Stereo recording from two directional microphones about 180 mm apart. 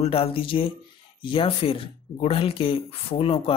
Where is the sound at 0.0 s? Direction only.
30° left (ahead or behind).